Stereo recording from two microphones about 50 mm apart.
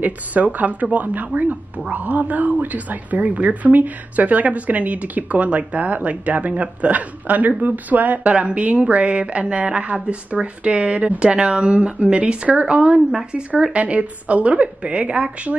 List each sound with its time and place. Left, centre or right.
0.0 s speech: right